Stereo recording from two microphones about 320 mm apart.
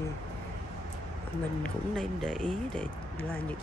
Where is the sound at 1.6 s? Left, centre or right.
Centre.